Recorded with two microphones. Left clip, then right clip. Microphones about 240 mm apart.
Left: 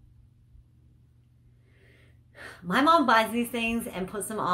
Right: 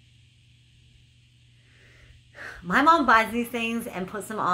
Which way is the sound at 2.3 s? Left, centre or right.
Centre.